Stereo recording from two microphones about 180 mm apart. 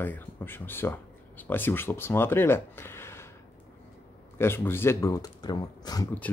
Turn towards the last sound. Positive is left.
turn(degrees=20)  # may be behind; listen again after turning